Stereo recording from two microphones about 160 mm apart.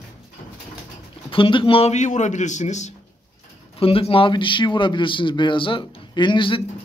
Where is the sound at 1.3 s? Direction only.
35° left (ahead or behind).